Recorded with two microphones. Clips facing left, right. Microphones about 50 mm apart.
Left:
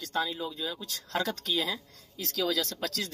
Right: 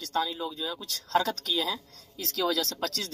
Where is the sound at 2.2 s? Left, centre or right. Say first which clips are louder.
Right 2 dB; centre.